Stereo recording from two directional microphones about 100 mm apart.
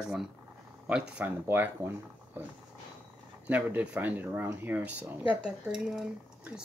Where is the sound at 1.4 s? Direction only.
25° right (ahead or behind).